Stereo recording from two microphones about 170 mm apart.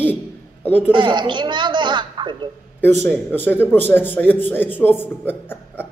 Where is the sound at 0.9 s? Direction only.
25° right (ahead or behind).